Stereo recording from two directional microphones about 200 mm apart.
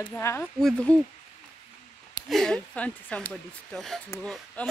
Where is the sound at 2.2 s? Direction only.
Centre (ahead or behind).